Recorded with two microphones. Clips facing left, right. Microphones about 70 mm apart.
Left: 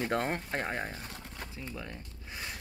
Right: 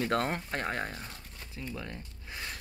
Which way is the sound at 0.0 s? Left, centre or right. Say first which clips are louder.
Right 1 dB; centre.